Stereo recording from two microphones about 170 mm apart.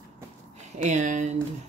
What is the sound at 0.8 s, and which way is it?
Speech, 45° right (ahead or behind).